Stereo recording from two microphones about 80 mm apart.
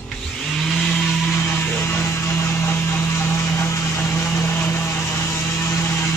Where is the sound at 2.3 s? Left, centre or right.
Left.